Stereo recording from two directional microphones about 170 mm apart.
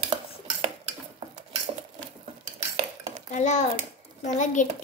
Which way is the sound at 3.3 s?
45° left (ahead or behind).